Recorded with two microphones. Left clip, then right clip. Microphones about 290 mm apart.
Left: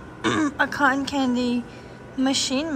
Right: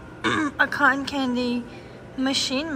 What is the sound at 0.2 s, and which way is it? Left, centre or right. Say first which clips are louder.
A woman's voice: even; centre.